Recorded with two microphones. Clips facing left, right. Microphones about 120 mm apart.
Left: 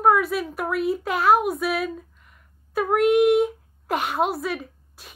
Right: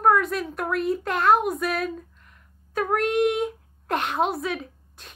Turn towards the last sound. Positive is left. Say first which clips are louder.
# even
turn(degrees=5)  # may be behind; listen again after turning